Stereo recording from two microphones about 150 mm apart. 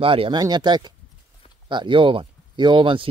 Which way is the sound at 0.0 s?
35° right (ahead or behind).